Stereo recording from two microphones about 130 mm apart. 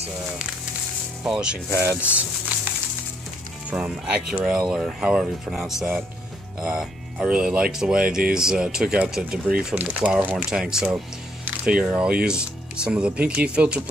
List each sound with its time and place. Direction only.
1.2 s speech: 5° right (ahead or behind)
1.7 s speech: 20° right (ahead or behind)
3.7 s speech: 5° right (ahead or behind)